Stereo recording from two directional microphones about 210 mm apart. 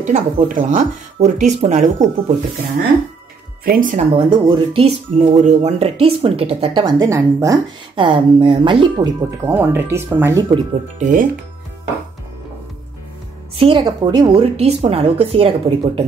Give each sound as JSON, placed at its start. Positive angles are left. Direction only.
{"t": 0.0, "sound": "speech", "side_deg": -40}
{"t": 3.6, "sound": "speech", "side_deg": -40}
{"t": 4.3, "sound": "speech", "side_deg": -30}
{"t": 10.5, "sound": "speech", "side_deg": -35}
{"t": 13.6, "sound": "speech", "side_deg": -25}